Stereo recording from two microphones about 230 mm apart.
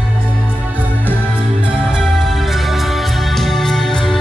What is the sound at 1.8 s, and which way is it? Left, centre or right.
Music, centre.